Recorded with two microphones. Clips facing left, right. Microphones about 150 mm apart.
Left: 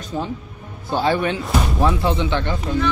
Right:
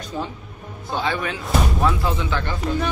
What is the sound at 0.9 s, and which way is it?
Speech, 35° left (ahead or behind).